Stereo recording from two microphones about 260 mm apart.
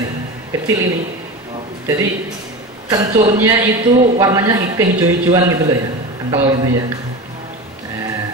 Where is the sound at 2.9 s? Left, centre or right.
Centre.